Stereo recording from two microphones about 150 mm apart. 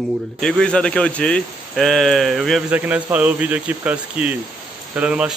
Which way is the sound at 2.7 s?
10° right (ahead or behind).